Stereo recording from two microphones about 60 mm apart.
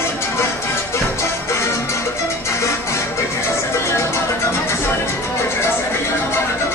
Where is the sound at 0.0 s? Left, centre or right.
Left.